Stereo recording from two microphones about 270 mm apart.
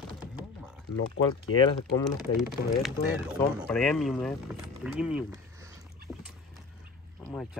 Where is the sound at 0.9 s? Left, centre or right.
Left.